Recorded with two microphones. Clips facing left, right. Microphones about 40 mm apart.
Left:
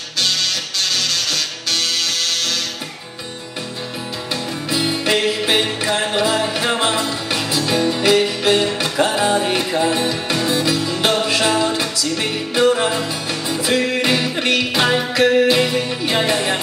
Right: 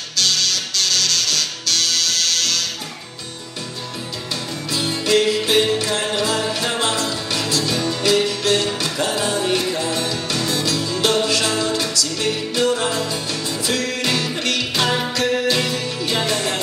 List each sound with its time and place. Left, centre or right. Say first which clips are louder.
0.2 s music: even; centre
4.6 s music: left 2 dB; left